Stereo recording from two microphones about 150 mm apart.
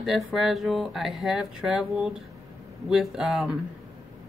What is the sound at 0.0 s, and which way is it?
Speech, centre (ahead or behind).